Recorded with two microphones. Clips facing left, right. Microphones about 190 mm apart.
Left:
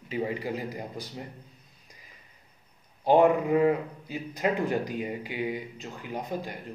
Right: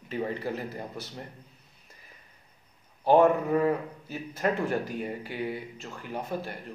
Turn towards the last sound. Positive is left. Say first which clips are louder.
# even
turn(degrees=15)  # may be behind; listen again after turning